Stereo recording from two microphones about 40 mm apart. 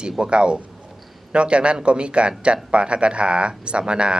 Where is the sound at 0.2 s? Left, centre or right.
Right.